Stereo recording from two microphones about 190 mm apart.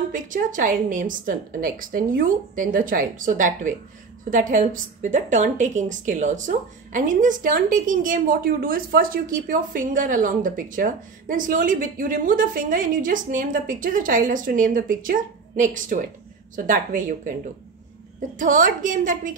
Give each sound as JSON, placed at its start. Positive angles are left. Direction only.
{"t": 0.1, "sound": "a woman's voice", "side_deg": -45}
{"t": 18.4, "sound": "a woman's voice", "side_deg": -45}